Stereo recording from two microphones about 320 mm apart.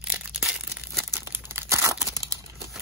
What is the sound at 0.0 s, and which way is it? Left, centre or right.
Crumpling, centre.